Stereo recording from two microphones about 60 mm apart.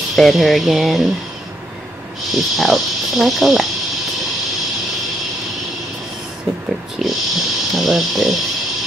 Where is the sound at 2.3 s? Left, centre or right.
Centre.